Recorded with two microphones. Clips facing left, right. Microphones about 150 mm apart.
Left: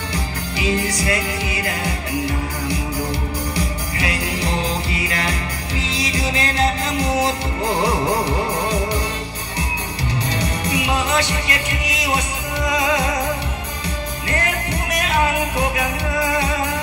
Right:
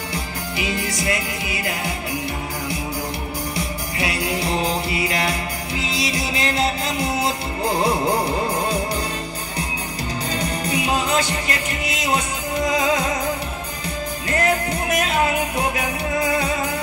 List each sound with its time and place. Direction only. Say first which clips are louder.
1.6 s speech: even; 20° right (ahead or behind)
4.0 s music: right 1 dB; 25° right (ahead or behind)
10.3 s music: right 1 dB; 30° right (ahead or behind)
11.4 s speech: even; 30° right (ahead or behind)
14.3 s music: right 4 dB; 30° right (ahead or behind)